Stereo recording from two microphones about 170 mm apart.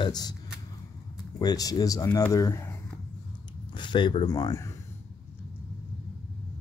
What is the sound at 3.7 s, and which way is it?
Speech, 25° left (ahead or behind).